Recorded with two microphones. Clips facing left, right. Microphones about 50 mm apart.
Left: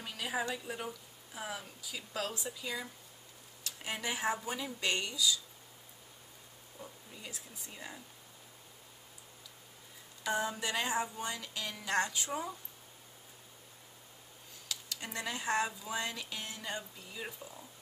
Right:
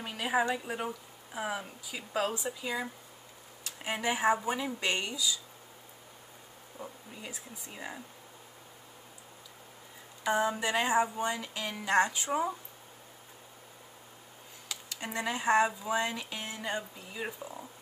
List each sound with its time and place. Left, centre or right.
0.0 s a woman's voice: right
6.8 s a woman's voice: centre
10.2 s speech: centre
14.7 s speech: centre